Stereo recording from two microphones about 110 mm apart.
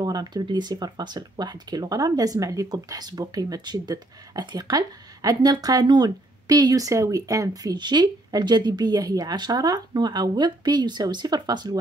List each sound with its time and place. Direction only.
0.0 s speech: 40° right (ahead or behind)